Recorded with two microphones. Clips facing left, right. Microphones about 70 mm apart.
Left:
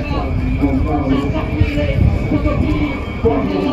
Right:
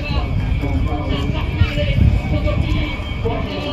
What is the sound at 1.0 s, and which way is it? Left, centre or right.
Speech, left.